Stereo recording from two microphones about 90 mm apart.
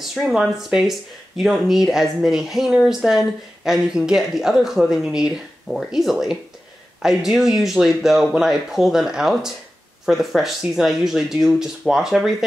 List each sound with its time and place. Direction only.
0.1 s speech: 5° right (ahead or behind)